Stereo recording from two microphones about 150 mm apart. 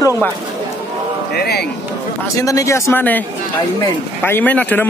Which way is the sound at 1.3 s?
90° left.